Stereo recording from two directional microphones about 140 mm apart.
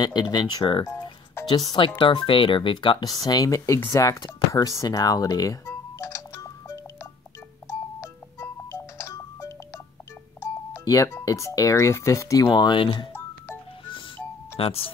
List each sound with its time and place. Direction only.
0.0 s speech: 30° left (ahead or behind)
7.6 s music: 20° left (ahead or behind)
10.4 s doorbell: 20° left (ahead or behind)
11.1 s speech: 20° left (ahead or behind)
12.4 s speech: 35° left (ahead or behind)
14.6 s speech: 45° left (ahead or behind)